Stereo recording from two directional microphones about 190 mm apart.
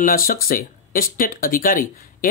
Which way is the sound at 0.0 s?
50° left (ahead or behind).